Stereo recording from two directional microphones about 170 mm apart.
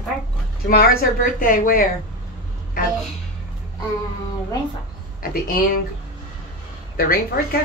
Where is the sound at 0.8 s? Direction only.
60° left (ahead or behind).